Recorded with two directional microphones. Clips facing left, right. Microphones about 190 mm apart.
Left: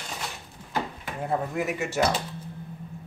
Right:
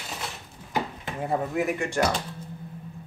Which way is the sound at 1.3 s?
Centre (ahead or behind).